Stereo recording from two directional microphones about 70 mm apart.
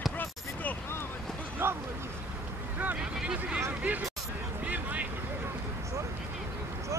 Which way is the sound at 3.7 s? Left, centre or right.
Right.